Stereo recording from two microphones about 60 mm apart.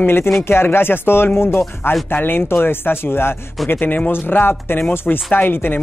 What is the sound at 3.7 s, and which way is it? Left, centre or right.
A man's voice, left.